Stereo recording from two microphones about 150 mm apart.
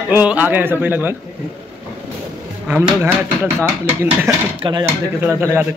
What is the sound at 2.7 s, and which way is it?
Speech, 10° right (ahead or behind).